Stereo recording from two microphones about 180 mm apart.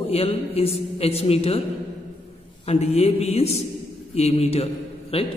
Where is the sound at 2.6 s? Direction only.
35° left (ahead or behind).